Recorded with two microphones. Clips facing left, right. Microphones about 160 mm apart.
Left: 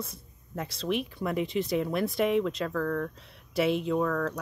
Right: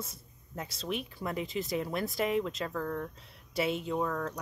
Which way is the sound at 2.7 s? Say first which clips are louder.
Left 5 dB; 25° right (ahead or behind).